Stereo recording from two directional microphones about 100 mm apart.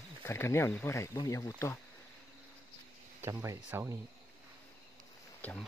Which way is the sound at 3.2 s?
25° right (ahead or behind).